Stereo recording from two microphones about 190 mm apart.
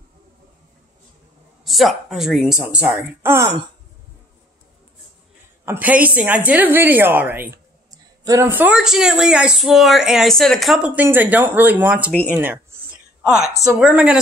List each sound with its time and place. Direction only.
1.6 s a woman's voice: centre (ahead or behind)
5.7 s a woman's voice: 10° right (ahead or behind)
13.6 s a woman's voice: 5° right (ahead or behind)